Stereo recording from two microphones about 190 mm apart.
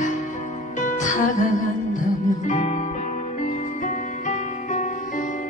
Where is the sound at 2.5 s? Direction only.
40° left (ahead or behind).